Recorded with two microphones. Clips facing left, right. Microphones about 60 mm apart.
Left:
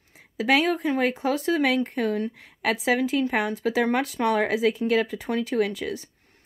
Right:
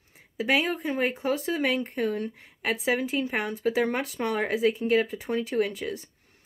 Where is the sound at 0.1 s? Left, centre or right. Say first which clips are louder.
Left 3 dB; left.